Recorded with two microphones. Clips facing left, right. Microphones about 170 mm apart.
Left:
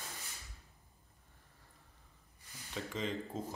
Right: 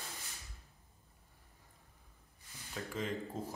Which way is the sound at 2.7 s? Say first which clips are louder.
Even; centre (ahead or behind).